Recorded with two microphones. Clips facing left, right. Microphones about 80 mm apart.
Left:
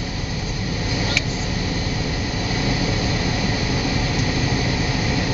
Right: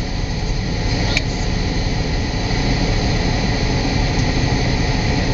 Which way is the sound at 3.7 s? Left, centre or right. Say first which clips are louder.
Right 2 dB; right.